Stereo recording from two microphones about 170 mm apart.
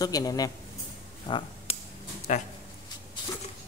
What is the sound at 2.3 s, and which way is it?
Speech, 45° left (ahead or behind).